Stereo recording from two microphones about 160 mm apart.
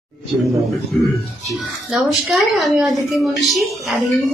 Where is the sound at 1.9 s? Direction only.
5° right (ahead or behind).